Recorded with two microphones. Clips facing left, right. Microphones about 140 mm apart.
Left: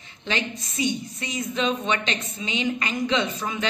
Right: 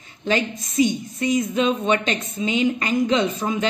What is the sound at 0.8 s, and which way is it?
A woman's voice, 45° right (ahead or behind).